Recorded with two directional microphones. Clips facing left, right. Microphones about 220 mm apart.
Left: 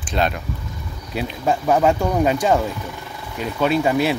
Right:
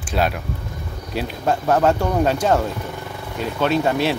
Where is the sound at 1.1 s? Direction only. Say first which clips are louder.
Even; 5° left (ahead or behind).